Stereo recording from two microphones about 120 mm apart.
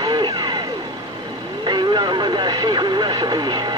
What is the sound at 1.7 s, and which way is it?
Vehicle, 40° right (ahead or behind).